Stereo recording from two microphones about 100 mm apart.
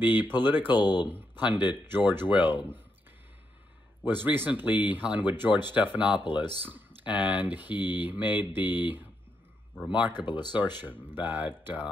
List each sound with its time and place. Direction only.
0.0 s mantra: 20° right (ahead or behind)
0.4 s speech: 20° right (ahead or behind)
0.7 s speech: 45° left (ahead or behind)
1.9 s mantra: 20° right (ahead or behind)
4.0 s speech: 20° right (ahead or behind)
7.8 s mantra: 20° right (ahead or behind)
11.1 s speech: 20° right (ahead or behind)